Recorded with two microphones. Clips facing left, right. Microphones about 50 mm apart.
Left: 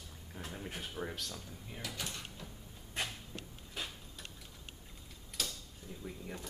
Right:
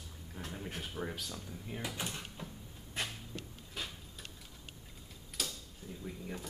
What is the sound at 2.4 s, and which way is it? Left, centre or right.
Cupboard open or close, centre.